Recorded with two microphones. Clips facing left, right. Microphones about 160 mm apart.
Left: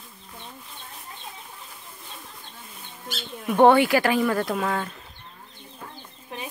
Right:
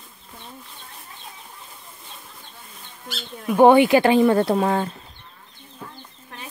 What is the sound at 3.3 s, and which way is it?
Speech, centre (ahead or behind).